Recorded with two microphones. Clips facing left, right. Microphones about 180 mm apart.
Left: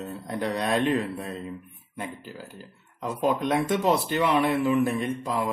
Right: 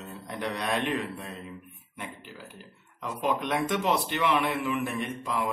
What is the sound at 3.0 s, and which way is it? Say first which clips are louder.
A man's voice: left 4 dB; 35° left (ahead or behind).